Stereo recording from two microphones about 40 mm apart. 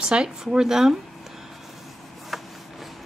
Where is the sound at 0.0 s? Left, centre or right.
Centre.